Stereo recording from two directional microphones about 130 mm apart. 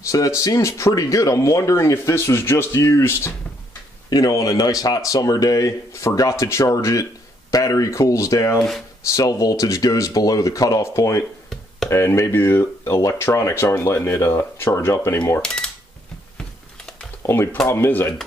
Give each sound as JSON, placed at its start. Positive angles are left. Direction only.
{"t": 0.4, "sound": "speech", "side_deg": 25}
{"t": 8.5, "sound": "speech", "side_deg": 0}
{"t": 9.1, "sound": "speech", "side_deg": 25}
{"t": 15.4, "sound": "cash register", "side_deg": 5}
{"t": 17.2, "sound": "speech", "side_deg": 20}